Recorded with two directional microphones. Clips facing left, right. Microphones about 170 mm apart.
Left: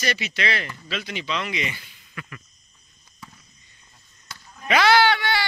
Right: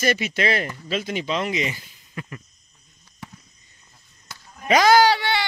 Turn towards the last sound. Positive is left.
turn(degrees=-30)  # may be behind; listen again after turning